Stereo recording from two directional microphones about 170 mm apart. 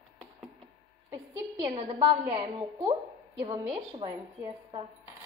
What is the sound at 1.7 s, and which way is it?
A woman's voice, 30° right (ahead or behind).